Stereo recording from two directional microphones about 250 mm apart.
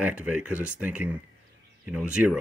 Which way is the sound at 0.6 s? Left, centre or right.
Centre.